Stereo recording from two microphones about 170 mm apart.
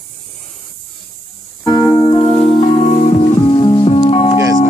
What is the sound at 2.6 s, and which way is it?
Music, 45° left (ahead or behind).